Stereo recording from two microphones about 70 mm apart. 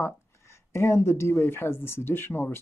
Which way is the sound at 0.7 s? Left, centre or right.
Left.